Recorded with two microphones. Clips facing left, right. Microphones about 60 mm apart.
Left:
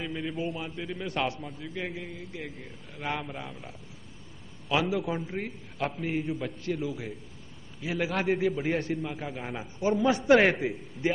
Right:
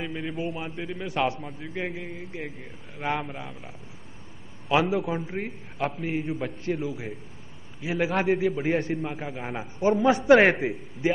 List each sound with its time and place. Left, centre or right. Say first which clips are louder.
0.0 s a man's voice: right 2 dB; centre
1.6 s speech: right 2 dB; right
3.3 s a man's voice: right 1 dB; centre
4.6 s speech: right 4 dB; right
5.0 s a man's voice: right 2 dB; centre
8.3 s a man's voice: right 3 dB; centre
8.7 s speech: right 3 dB; right
10.7 s a man's voice: right 3 dB; centre